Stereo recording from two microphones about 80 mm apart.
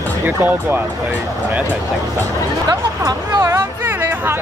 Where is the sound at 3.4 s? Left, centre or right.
Right.